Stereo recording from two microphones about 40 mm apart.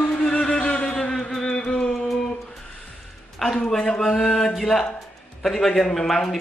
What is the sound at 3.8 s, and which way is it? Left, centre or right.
Speech, centre.